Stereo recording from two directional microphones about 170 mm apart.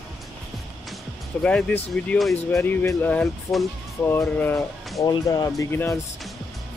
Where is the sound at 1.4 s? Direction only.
5° left (ahead or behind).